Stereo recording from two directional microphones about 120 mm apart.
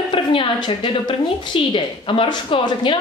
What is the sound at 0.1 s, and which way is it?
Speech, 45° left (ahead or behind).